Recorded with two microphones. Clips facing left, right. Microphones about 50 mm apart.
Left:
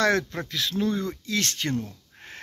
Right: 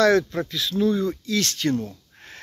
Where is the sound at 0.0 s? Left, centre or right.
Left.